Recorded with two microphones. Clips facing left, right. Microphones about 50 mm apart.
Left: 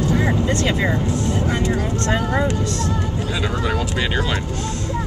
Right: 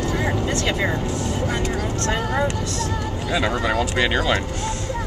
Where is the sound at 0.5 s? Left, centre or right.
Left.